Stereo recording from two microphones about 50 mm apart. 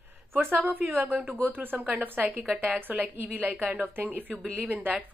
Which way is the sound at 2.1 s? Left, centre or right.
Right.